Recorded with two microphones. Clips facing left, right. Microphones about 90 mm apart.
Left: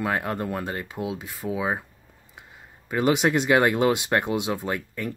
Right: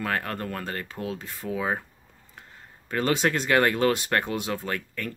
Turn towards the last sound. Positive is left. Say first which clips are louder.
# left 3 dB
turn(degrees=15)  # may be behind; listen again after turning